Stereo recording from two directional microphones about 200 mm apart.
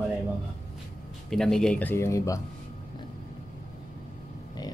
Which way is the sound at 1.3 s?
5° left (ahead or behind).